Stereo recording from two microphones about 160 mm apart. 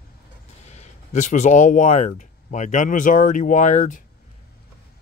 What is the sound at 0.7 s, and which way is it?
Speech, 45° left (ahead or behind).